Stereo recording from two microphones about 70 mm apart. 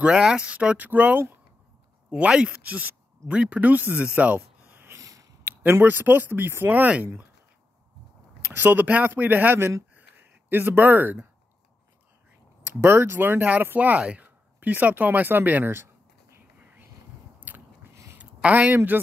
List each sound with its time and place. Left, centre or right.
0.0 s speech: centre
8.5 s speech: right
9.9 s a sound: right
10.7 s speech: right
12.8 s speech: right
16.5 s whispering: right
17.5 s biting: right
18.1 s a sound: right